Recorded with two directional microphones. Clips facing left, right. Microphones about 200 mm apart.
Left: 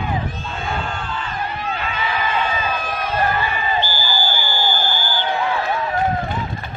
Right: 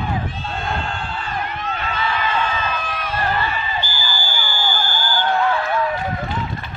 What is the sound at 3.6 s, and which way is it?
Basketball bounce, 45° left (ahead or behind).